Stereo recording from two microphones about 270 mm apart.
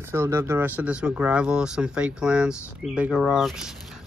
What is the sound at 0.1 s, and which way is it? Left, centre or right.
Speech, centre.